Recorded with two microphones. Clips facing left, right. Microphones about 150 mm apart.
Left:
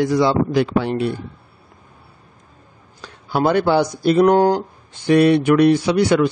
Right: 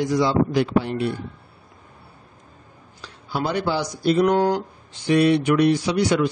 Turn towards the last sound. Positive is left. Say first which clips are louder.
# left 4 dB
turn(degrees=60)  # may be behind; listen again after turning